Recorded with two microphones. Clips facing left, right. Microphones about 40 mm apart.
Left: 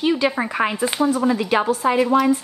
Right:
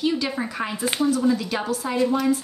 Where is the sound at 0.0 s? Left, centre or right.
Left.